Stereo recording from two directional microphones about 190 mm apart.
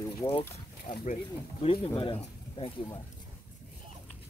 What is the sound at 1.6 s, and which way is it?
Speech, 30° left (ahead or behind).